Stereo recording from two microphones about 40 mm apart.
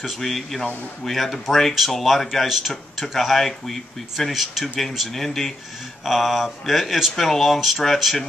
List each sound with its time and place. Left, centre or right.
0.0 s speech: centre